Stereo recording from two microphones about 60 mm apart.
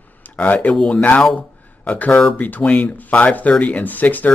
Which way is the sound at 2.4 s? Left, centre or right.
Left.